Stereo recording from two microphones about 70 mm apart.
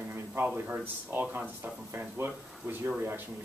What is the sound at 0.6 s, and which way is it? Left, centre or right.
Speech, right.